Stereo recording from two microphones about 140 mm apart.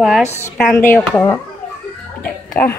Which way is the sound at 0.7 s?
15° left (ahead or behind).